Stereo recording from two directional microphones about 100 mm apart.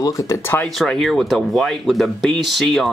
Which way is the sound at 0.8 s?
5° left (ahead or behind).